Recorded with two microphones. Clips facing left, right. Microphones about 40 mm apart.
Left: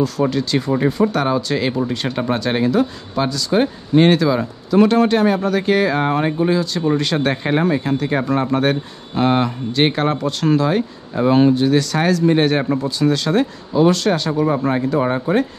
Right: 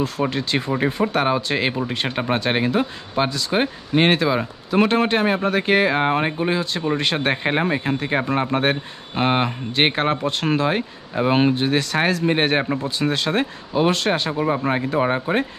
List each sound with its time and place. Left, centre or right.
0.2 s speech: right
14.4 s speech: centre